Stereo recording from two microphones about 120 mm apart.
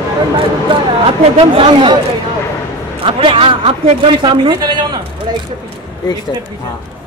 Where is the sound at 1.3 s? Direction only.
50° right (ahead or behind).